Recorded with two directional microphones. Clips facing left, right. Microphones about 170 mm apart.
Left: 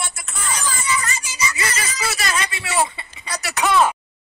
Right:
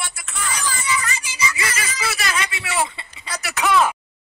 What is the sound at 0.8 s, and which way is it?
Speech, 40° left (ahead or behind).